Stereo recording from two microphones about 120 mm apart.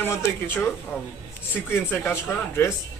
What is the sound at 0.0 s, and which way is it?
Speech, 15° left (ahead or behind).